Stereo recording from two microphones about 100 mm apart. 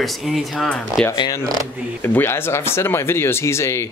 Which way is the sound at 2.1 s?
25° left (ahead or behind).